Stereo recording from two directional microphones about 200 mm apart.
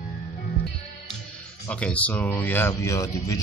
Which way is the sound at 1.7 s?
5° left (ahead or behind).